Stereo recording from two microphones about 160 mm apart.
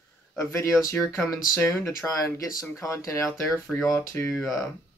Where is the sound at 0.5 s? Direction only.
20° left (ahead or behind).